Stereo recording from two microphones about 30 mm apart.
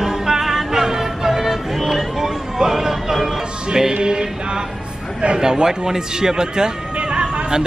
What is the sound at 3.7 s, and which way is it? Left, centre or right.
Music, right.